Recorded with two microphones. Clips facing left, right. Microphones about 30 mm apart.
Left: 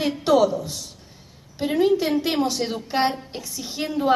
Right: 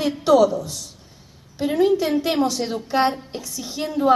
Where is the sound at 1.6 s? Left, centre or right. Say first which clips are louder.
Right 1 dB; centre.